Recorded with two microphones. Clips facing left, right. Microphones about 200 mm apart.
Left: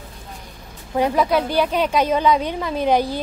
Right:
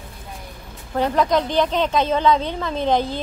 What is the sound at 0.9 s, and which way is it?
A woman's voice, 10° left (ahead or behind).